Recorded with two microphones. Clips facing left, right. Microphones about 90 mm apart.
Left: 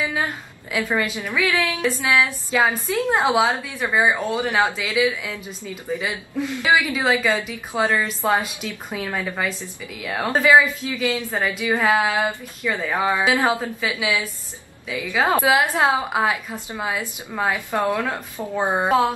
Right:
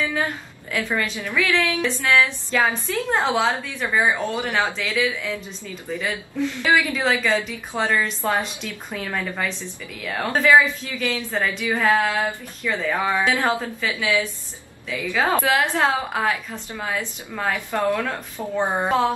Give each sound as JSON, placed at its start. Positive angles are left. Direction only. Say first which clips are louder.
{"t": 0.7, "sound": "a woman's voice", "louder": "left 2 dB", "side_deg": 15}
{"t": 4.7, "sound": "a woman's voice", "louder": "left 2 dB", "side_deg": 5}
{"t": 7.8, "sound": "a sound", "louder": "left 1 dB", "side_deg": 0}
{"t": 8.2, "sound": "a woman's voice", "louder": "left 2 dB", "side_deg": 15}
{"t": 11.3, "sound": "speech", "louder": "left 1 dB", "side_deg": 20}
{"t": 11.8, "sound": "a woman's voice", "louder": "even", "side_deg": 5}
{"t": 12.2, "sound": "a woman's voice", "louder": "left 2 dB", "side_deg": 20}
{"t": 18.9, "sound": "a sound", "louder": "left 2 dB", "side_deg": 5}